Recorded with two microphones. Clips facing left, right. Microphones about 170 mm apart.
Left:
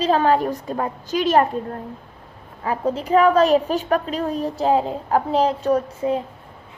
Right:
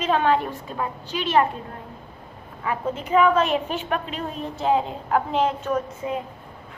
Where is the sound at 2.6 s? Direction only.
35° left (ahead or behind).